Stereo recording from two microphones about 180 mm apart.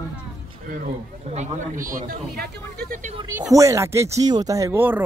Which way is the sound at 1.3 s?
45° right (ahead or behind).